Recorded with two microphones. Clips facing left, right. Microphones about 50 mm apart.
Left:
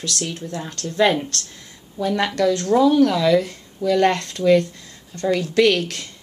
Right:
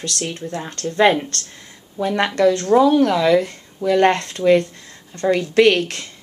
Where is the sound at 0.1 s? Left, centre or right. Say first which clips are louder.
Even; right.